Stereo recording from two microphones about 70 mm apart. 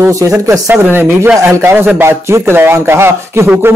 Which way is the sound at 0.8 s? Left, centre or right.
Right.